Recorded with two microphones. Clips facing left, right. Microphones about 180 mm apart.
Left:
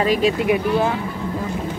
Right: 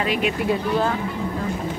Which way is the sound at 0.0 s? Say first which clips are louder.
Left 5 dB; 35° left (ahead or behind).